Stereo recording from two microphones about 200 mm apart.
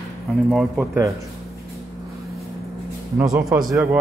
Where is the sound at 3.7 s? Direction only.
15° right (ahead or behind).